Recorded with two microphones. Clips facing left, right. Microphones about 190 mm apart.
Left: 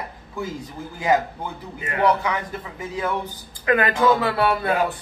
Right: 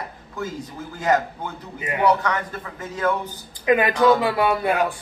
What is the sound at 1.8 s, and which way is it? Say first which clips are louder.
Speech: even; 15° right (ahead or behind).